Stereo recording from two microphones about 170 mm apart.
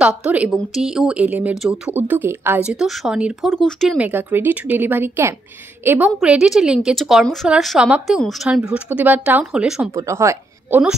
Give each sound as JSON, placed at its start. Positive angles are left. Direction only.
{"t": 0.2, "sound": "a woman's voice", "side_deg": -5}
{"t": 4.0, "sound": "a woman's voice", "side_deg": -10}
{"t": 9.8, "sound": "speech", "side_deg": -15}